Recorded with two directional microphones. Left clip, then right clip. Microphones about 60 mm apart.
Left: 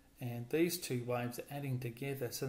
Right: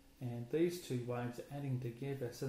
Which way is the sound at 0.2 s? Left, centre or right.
Left.